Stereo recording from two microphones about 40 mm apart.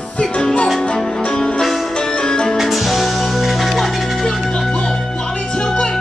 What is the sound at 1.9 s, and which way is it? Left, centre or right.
Music, left.